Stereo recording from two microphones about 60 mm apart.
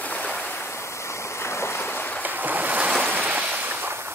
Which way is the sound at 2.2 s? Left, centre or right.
Right.